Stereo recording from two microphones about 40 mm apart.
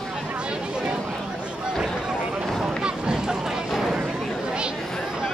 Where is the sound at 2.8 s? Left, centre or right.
Right.